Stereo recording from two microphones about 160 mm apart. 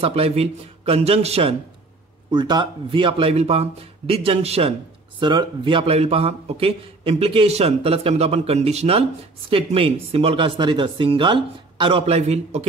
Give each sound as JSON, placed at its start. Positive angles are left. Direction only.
{"t": 0.0, "sound": "speech", "side_deg": -40}
{"t": 2.3, "sound": "speech", "side_deg": -30}